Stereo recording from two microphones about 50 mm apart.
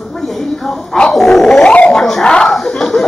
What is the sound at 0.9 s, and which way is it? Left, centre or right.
Speech, centre.